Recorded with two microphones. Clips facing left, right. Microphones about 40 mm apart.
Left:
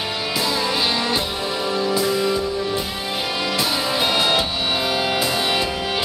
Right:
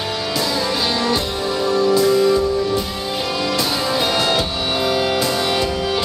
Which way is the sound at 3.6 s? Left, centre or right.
Centre.